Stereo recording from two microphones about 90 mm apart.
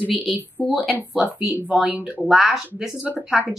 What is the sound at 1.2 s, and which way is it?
Speech, 15° right (ahead or behind).